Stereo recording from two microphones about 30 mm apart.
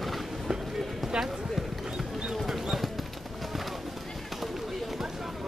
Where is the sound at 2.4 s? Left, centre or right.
Centre.